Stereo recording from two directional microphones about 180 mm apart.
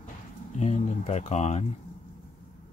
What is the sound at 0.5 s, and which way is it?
Speech, 40° left (ahead or behind).